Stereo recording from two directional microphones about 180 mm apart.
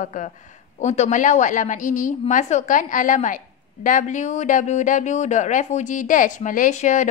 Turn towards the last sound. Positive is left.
turn(degrees=45)  # may be behind; listen again after turning